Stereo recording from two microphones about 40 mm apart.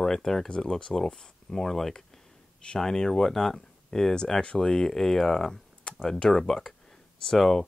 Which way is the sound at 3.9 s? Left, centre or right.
Centre.